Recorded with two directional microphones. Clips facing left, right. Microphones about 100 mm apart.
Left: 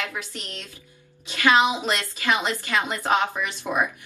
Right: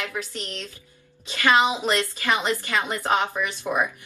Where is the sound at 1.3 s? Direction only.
15° left (ahead or behind).